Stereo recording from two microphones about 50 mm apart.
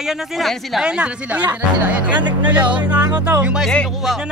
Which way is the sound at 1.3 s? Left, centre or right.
Right.